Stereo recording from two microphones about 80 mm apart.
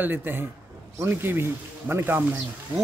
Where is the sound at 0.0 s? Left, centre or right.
Right.